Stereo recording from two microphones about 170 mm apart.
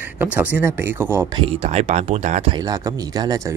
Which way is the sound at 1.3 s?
35° right (ahead or behind).